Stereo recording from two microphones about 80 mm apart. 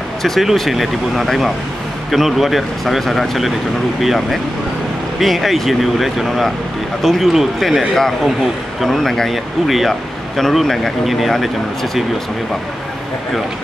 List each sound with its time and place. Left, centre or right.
0.2 s speech: centre